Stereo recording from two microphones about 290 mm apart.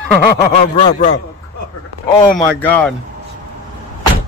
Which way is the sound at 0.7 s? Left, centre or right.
Left.